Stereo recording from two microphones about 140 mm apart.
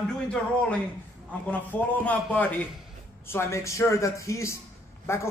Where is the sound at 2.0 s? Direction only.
10° left (ahead or behind).